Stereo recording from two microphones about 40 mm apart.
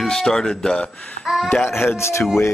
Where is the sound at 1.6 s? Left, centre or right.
Left.